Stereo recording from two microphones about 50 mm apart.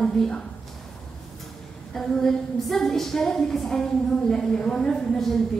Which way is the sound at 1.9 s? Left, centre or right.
Centre.